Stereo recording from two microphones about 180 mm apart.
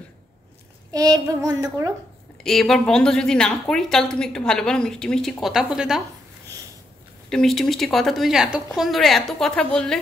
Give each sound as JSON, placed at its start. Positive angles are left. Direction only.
{"t": 0.9, "sound": "child singing", "side_deg": -20}
{"t": 2.4, "sound": "speech", "side_deg": 0}
{"t": 7.2, "sound": "speech", "side_deg": 0}